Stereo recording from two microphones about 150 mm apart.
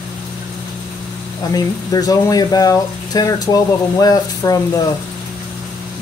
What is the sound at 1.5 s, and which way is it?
Speech, 25° left (ahead or behind).